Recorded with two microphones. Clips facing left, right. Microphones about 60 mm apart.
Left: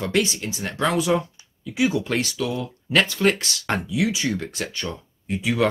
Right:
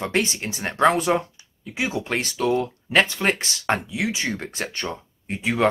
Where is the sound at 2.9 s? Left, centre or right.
Right.